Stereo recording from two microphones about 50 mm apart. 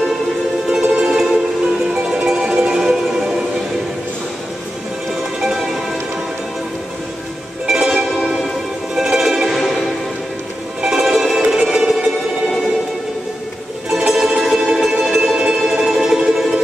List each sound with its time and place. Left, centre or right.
0.7 s music: centre
7.6 s music: centre
11.8 s music: centre
13.9 s music: centre
15.3 s music: centre
15.8 s music: centre